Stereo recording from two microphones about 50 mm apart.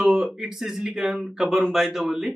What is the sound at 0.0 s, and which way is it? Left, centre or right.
Speech, centre.